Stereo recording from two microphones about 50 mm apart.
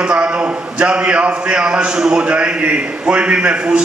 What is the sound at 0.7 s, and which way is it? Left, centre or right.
A man's voice, centre.